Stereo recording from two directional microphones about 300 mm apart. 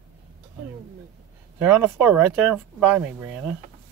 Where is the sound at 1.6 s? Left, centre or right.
Centre.